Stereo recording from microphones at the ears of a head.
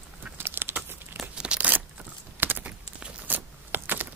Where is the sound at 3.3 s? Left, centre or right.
Right.